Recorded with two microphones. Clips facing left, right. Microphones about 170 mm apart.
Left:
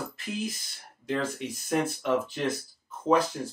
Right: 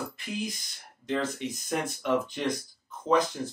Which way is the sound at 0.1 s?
Centre (ahead or behind).